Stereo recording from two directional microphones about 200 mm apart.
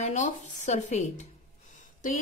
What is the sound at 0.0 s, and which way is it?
A woman's voice, 35° left (ahead or behind).